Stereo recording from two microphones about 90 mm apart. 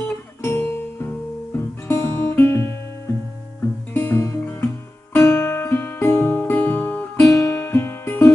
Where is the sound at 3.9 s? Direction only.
20° left (ahead or behind).